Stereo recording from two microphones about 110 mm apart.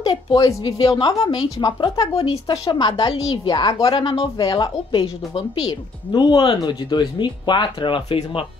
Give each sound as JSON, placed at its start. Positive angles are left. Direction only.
{"t": 0.4, "sound": "a woman's voice", "side_deg": 35}
{"t": 2.1, "sound": "speech", "side_deg": 65}
{"t": 2.4, "sound": "a woman's voice", "side_deg": 30}
{"t": 3.9, "sound": "speech", "side_deg": 50}
{"t": 5.0, "sound": "speech", "side_deg": 60}